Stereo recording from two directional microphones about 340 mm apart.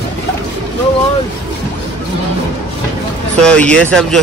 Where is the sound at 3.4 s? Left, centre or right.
Centre.